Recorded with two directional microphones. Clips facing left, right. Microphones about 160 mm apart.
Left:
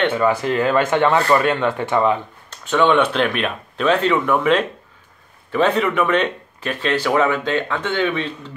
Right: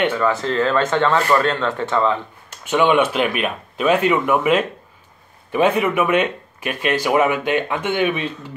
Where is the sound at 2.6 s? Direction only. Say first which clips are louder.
Even; 10° right (ahead or behind).